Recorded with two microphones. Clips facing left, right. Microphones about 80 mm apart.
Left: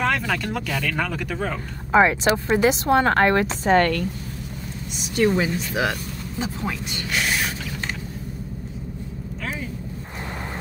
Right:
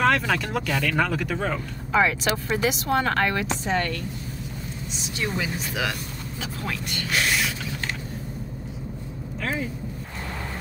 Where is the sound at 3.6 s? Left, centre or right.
Left.